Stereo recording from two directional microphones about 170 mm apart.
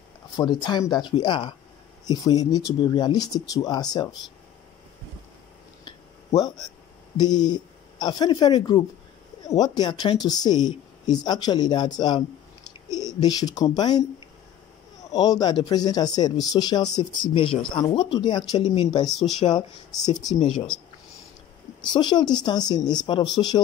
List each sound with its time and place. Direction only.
0.4 s speech: 25° left (ahead or behind)
5.9 s a sound: 25° left (ahead or behind)
7.2 s speech: 25° left (ahead or behind)
15.0 s speech: 25° left (ahead or behind)
20.4 s speech: 5° left (ahead or behind)
21.8 s speech: 25° left (ahead or behind)